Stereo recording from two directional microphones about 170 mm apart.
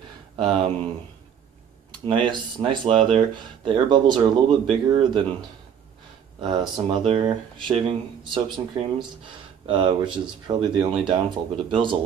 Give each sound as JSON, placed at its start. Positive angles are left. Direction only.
{"t": 0.4, "sound": "speech", "side_deg": -30}
{"t": 1.9, "sound": "speech", "side_deg": -30}
{"t": 6.4, "sound": "speech", "side_deg": -25}